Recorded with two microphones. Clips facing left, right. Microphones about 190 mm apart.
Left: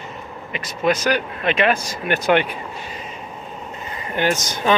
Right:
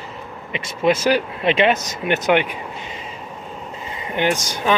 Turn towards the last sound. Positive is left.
turn(degrees=-10)  # may be behind; listen again after turning